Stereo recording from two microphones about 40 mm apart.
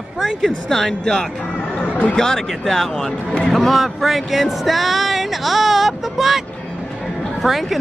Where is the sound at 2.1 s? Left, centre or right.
Centre.